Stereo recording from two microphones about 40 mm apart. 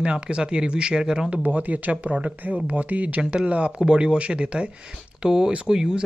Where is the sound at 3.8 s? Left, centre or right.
Right.